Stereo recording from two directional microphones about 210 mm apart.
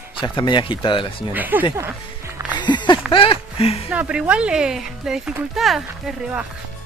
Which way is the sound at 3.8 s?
5° right (ahead or behind).